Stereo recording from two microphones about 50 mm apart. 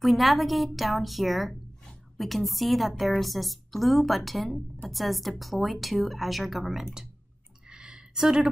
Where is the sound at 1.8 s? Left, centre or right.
Centre.